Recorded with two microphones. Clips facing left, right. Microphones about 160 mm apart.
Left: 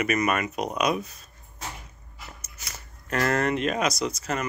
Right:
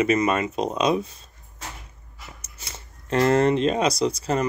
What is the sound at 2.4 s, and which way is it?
Speech, 25° right (ahead or behind).